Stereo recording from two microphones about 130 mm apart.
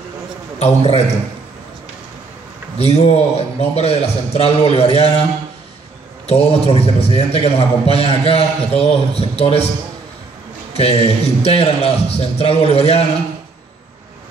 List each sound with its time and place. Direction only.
0.6 s a man's voice: 55° left (ahead or behind)
2.8 s a man's voice: 55° left (ahead or behind)
6.2 s a man's voice: 50° left (ahead or behind)
10.7 s a man's voice: 50° left (ahead or behind)